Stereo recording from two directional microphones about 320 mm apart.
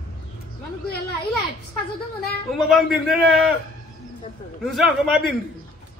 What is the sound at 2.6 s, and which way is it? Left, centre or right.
Speech, centre.